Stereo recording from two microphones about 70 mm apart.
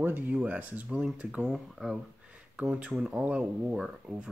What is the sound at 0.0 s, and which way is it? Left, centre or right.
Speech, right.